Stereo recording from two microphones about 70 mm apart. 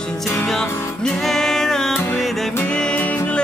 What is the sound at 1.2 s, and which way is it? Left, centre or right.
Music, centre.